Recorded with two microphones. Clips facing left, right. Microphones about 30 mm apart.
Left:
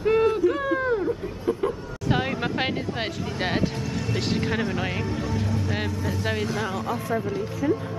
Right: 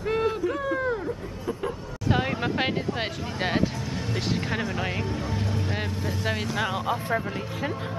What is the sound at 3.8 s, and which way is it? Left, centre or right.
Speech, right.